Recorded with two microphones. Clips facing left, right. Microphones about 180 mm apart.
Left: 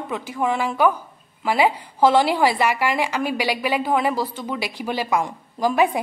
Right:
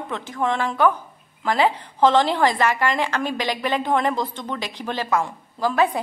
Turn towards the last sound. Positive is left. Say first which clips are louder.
# left 1 dB
turn(degrees=15)  # may be behind; listen again after turning